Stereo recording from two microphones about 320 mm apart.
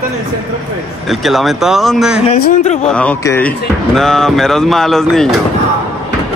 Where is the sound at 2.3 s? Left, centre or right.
Left.